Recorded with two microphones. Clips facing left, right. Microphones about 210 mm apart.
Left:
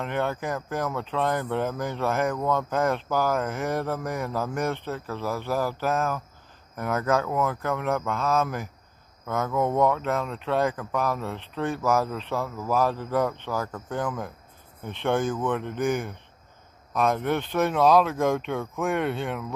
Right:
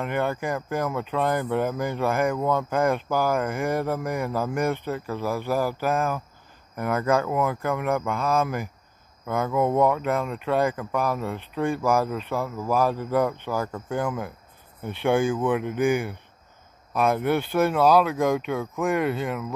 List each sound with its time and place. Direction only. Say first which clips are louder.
0.0 s speech: right 2 dB; 5° right (ahead or behind)